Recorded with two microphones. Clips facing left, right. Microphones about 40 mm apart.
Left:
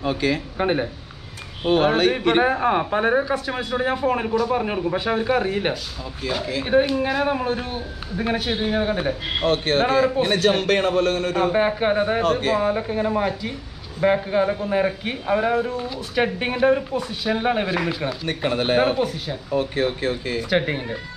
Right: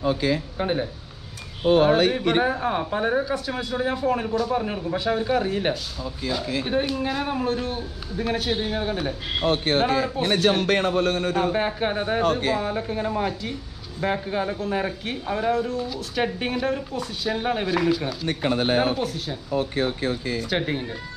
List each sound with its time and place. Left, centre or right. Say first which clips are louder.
0.0 s speech: left 1 dB; left
0.6 s a man's voice: left 3 dB; left
1.7 s a man's voice: even; left; by 9.1 s centre
9.5 s a man's voice: left 2 dB; left
11.5 s speech: left 5 dB; centre
12.2 s a man's voice: left 2 dB; left
12.5 s a man's voice: left 5 dB; centre
18.4 s speech: left 1 dB; left
18.9 s speech: left 4 dB; centre
19.5 s speech: left 2 dB; left
20.4 s speech: left 5 dB; centre